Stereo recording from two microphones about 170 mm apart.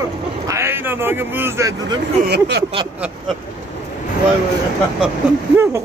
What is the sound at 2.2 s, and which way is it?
Speech, 75° right (ahead or behind).